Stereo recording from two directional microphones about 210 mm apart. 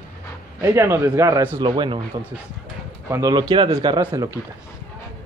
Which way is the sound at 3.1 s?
15° right (ahead or behind).